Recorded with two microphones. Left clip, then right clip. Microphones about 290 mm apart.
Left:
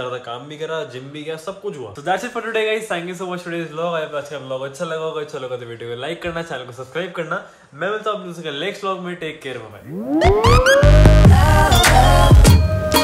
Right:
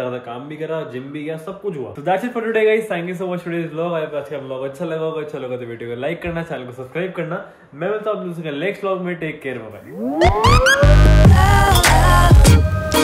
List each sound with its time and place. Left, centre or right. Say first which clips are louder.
0.1 s speech: even; centre
2.0 s speech: right 2 dB; centre
8.5 s speech: right 2 dB; centre
10.1 s music: even; centre